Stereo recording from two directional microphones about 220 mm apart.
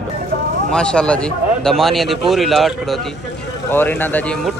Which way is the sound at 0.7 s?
5° left (ahead or behind).